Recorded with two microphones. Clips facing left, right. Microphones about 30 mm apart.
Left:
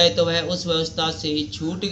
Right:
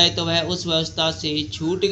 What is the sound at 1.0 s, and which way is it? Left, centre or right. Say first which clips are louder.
Speech: right 2 dB; right.